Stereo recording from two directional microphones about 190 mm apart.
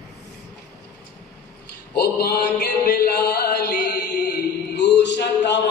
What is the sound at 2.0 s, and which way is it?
Music, 55° left (ahead or behind).